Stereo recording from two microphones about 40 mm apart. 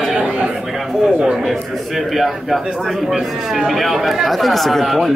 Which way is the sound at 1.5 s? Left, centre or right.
Centre.